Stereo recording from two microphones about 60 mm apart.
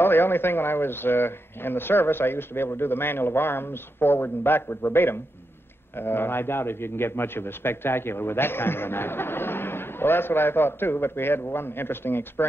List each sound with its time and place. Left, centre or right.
0.0 s a man's voice: left